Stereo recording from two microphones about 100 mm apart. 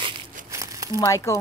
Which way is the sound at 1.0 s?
30° left (ahead or behind).